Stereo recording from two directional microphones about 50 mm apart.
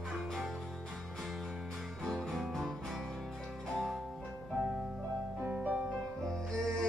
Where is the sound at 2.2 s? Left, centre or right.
Centre.